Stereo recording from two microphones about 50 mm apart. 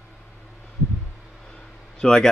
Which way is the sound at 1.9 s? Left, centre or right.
Centre.